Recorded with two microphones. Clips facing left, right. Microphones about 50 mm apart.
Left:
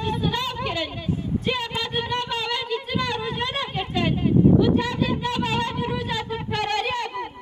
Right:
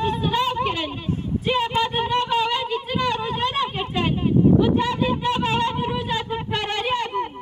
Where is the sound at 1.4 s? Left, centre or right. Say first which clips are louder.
Right 9 dB; right.